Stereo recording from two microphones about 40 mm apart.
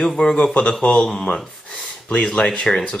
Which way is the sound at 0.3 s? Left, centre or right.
Centre.